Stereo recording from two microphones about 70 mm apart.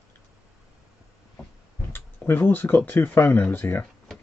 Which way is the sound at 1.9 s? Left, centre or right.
Left.